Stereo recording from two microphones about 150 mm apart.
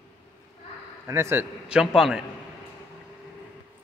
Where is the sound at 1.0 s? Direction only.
15° right (ahead or behind).